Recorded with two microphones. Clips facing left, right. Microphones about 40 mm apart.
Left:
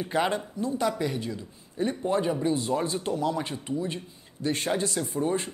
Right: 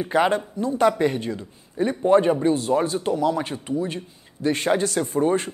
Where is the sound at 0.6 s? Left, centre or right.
Right.